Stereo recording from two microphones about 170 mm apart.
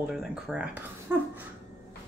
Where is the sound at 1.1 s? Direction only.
15° right (ahead or behind).